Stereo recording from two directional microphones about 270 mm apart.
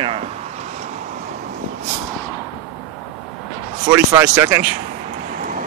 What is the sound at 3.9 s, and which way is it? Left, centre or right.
Speech, centre.